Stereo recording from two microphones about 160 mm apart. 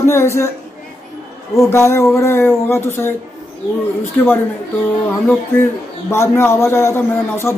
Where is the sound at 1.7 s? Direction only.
15° left (ahead or behind).